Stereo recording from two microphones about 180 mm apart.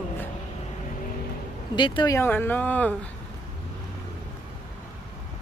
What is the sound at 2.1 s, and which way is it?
Speech, 10° left (ahead or behind).